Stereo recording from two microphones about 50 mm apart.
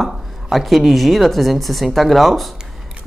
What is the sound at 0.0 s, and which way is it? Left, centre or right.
A woman's voice, centre.